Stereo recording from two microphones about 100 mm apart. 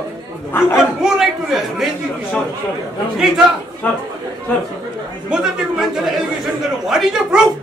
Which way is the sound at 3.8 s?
15° left (ahead or behind).